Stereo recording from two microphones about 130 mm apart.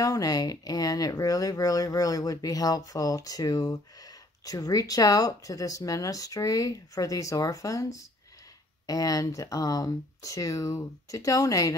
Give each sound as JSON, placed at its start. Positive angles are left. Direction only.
{"t": 0.0, "sound": "speech", "side_deg": 30}